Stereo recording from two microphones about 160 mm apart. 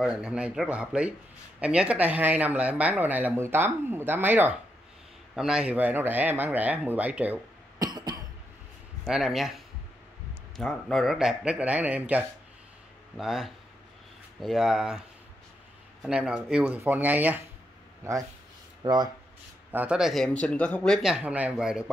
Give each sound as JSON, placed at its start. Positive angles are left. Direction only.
{"t": 0.0, "sound": "speech", "side_deg": -5}
{"t": 7.8, "sound": "cough", "side_deg": -25}
{"t": 9.0, "sound": "speech", "side_deg": -5}
{"t": 10.6, "sound": "speech", "side_deg": 0}
{"t": 16.0, "sound": "speech", "side_deg": -5}
{"t": 18.8, "sound": "speech", "side_deg": -25}
{"t": 19.7, "sound": "speech", "side_deg": -10}